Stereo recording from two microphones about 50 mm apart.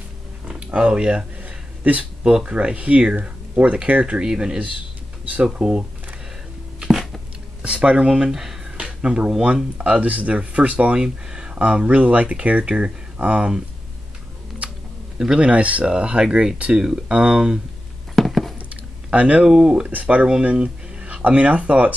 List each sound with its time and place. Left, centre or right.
0.7 s speech: right
1.4 s a sound: right
2.4 s speech: right
6.8 s a sound: centre
7.6 s speech: right
8.7 s speech: centre
11.0 s speech: centre
15.1 s speech: centre
18.1 s a sound: centre
19.0 s speech: right
19.9 s speech: right